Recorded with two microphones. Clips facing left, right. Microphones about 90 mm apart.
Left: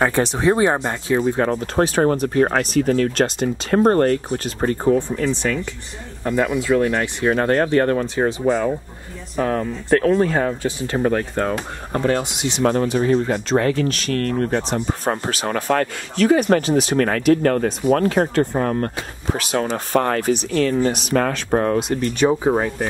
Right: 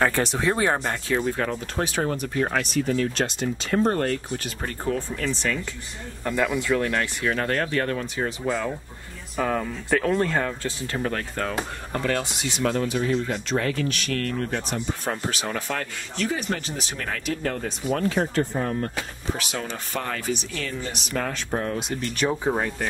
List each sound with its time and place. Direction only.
0.0 s speech: 20° left (ahead or behind)
1.4 s speech: 40° left (ahead or behind)
4.9 s speech: 15° left (ahead or behind)
7.2 s speech: 35° left (ahead or behind)
9.4 s speech: 5° left (ahead or behind); by 12.6 s 20° left (ahead or behind)
12.6 s speech: 40° left (ahead or behind); by 18.9 s 60° left (ahead or behind)
19.3 s speech: 50° left (ahead or behind); by 21.5 s 65° left (ahead or behind)
21.5 s speech: 50° left (ahead or behind)
22.2 s speech: 15° left (ahead or behind)